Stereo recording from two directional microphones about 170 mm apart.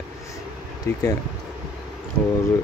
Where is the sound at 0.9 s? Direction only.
15° left (ahead or behind).